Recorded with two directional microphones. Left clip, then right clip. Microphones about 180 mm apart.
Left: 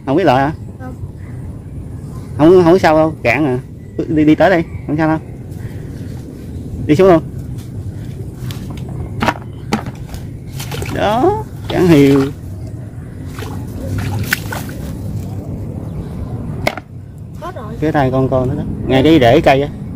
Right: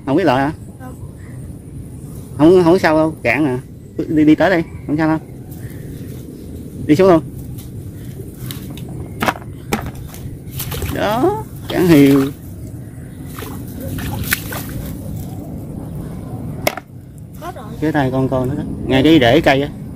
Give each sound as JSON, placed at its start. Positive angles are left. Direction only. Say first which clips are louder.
{"t": 0.0, "sound": "speech", "louder": "left 3 dB", "side_deg": 5}
{"t": 2.3, "sound": "a man's voice", "louder": "left 2 dB", "side_deg": 5}
{"t": 6.9, "sound": "a man's voice", "louder": "left 2 dB", "side_deg": 0}
{"t": 9.2, "sound": "walk", "louder": "left 2 dB", "side_deg": -25}
{"t": 10.7, "sound": "speech", "louder": "left 3 dB", "side_deg": 0}
{"t": 14.0, "sound": "boat", "louder": "left 2 dB", "side_deg": 0}
{"t": 17.4, "sound": "speech", "louder": "left 2 dB", "side_deg": -10}